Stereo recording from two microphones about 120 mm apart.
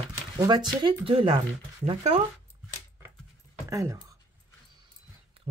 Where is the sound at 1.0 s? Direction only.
50° right (ahead or behind).